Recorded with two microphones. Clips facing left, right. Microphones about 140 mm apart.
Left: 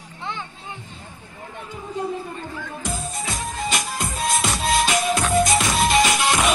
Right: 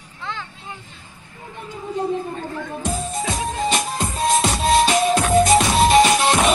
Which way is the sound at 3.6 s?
30° right (ahead or behind).